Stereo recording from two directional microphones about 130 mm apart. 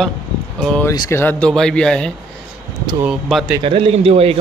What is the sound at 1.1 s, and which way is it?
Speech, 15° left (ahead or behind).